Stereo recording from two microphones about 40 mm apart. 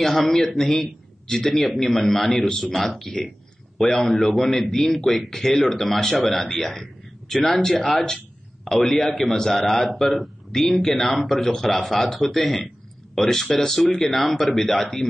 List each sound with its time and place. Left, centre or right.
0.2 s a man's voice: centre
4.0 s a man's voice: centre
7.2 s speech: centre
7.8 s speech: left
8.6 s a man's voice: centre
11.4 s a man's voice: centre